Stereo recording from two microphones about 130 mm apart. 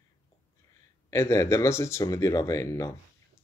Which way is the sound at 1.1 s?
20° left (ahead or behind).